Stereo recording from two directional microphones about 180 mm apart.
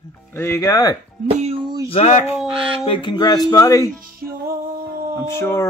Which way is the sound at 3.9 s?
50° right (ahead or behind).